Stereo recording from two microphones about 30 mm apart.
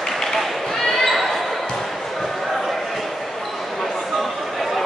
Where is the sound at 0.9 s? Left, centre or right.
Centre.